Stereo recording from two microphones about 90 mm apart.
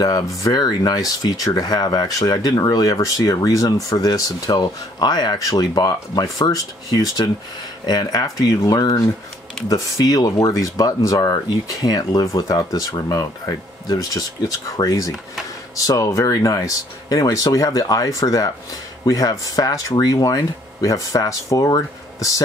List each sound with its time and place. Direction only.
0.0 s speech: 45° left (ahead or behind)
10.0 s speech: 45° left (ahead or behind)